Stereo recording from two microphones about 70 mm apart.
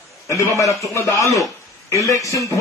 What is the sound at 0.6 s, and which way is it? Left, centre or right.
A man's voice, left.